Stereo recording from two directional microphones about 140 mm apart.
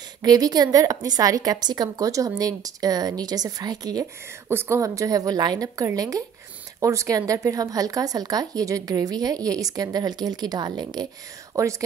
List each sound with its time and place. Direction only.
0.2 s a woman's voice: 30° right (ahead or behind)